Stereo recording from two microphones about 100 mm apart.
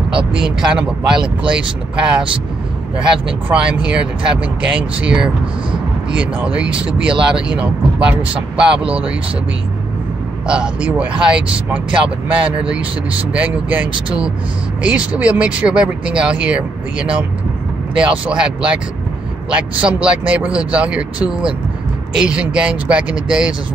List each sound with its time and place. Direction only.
0.1 s speech: 5° right (ahead or behind)
10.4 s speech: 10° right (ahead or behind)